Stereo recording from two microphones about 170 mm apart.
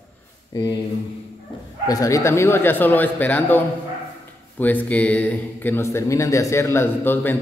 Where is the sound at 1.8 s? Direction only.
20° left (ahead or behind).